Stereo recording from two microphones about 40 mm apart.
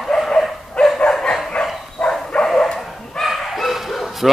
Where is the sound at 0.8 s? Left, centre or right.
Left.